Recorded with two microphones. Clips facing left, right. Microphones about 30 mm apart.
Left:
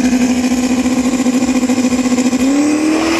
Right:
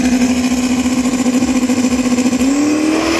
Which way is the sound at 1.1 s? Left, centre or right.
Centre.